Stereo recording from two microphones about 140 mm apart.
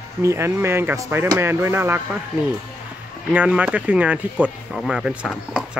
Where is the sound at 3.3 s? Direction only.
10° right (ahead or behind).